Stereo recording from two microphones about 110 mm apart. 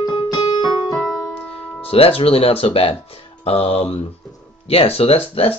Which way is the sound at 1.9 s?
60° left (ahead or behind).